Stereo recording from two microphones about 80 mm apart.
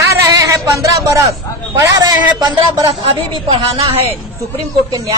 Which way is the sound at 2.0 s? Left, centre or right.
Right.